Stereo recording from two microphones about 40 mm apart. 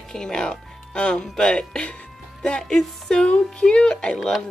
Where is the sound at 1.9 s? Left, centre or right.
Left.